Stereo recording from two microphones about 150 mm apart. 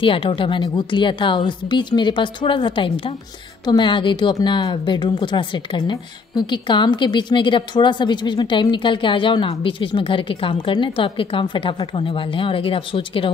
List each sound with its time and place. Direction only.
0.0 s a woman's voice: 35° left (ahead or behind)